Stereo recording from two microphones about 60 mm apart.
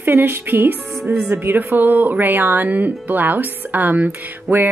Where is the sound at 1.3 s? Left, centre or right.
Right.